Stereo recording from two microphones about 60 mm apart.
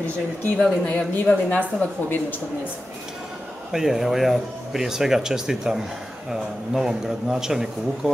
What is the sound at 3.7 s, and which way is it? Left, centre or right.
Speech, centre.